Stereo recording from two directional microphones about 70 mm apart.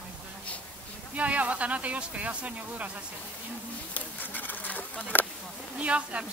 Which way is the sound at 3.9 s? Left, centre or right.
Left.